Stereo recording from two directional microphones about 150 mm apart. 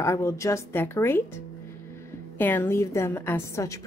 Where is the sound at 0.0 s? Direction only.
20° left (ahead or behind).